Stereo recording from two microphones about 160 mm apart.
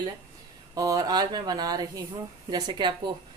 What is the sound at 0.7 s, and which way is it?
A woman's voice, 20° right (ahead or behind).